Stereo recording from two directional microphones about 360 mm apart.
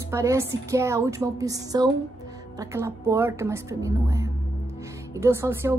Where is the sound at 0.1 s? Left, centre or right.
Centre.